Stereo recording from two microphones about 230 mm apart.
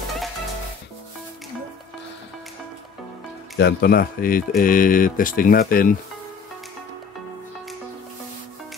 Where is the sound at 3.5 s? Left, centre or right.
Left.